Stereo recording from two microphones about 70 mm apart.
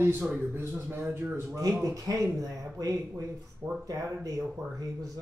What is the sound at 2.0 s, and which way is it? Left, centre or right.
Speech, right.